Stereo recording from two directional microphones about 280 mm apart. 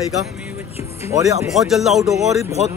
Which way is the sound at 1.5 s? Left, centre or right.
Centre.